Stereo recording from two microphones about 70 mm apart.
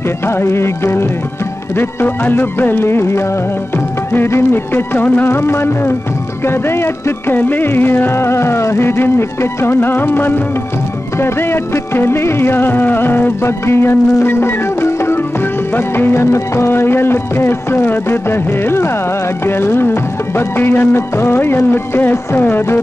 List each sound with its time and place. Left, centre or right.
0.3 s music: left